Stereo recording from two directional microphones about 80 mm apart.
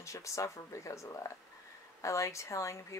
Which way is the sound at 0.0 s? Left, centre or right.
Left.